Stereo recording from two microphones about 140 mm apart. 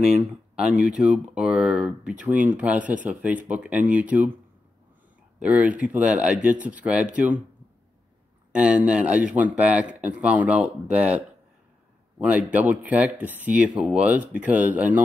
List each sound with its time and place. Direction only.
0.9 s speech: 5° right (ahead or behind)
5.4 s speech: 10° right (ahead or behind)
8.5 s speech: 10° right (ahead or behind)
12.2 s speech: 10° right (ahead or behind)